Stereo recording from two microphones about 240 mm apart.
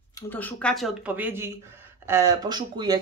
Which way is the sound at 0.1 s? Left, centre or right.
Centre.